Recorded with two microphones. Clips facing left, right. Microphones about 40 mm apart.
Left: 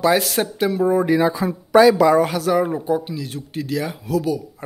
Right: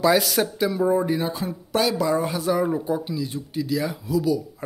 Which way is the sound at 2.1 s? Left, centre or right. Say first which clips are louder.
Left 6 dB; left.